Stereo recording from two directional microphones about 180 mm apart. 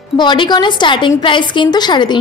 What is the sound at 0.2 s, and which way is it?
A woman's voice, 25° left (ahead or behind).